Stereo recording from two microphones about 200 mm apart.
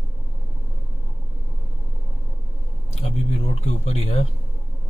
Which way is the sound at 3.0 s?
30° left (ahead or behind).